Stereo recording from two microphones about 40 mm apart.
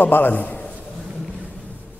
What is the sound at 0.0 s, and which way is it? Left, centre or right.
Speech, left.